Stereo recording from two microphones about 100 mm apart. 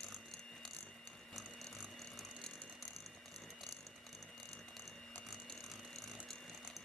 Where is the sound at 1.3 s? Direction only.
Centre (ahead or behind).